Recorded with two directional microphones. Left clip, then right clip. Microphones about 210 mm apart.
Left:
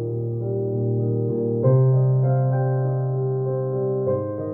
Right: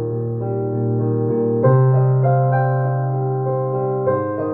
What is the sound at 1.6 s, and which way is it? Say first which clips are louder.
Music: right 5 dB; 25° right (ahead or behind).